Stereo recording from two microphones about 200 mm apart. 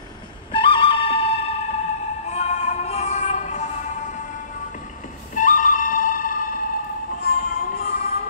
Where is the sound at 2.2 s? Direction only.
35° left (ahead or behind).